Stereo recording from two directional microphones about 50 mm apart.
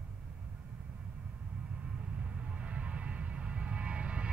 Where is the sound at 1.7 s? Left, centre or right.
Right.